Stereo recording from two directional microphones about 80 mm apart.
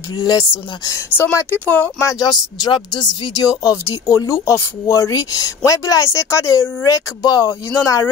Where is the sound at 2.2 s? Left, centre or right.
Left.